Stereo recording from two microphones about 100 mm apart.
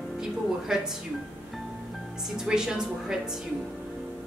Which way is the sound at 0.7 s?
5° right (ahead or behind).